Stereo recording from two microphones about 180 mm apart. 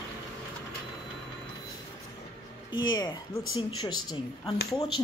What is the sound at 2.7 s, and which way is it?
Speech, 20° left (ahead or behind).